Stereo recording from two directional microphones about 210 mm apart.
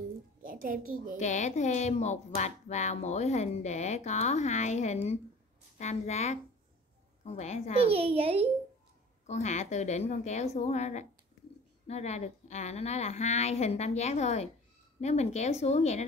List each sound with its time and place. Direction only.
0.4 s a sound: 40° right (ahead or behind)
1.2 s speech: 35° left (ahead or behind)
7.8 s a woman's voice: 25° right (ahead or behind)
9.2 s speech: 35° left (ahead or behind)